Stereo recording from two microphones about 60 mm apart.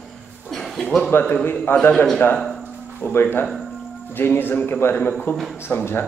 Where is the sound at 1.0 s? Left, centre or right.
Left.